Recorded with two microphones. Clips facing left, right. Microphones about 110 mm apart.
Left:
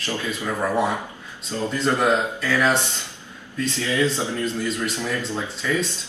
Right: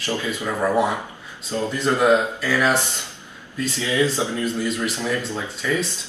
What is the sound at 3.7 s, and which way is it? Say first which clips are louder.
Speech: right 2 dB; 15° right (ahead or behind).